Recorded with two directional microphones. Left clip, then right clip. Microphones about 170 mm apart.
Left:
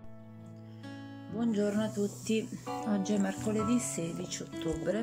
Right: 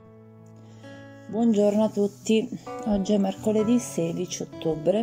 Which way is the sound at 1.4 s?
20° right (ahead or behind).